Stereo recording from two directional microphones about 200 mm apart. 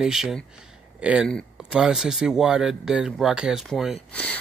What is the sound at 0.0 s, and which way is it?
Speech, centre (ahead or behind).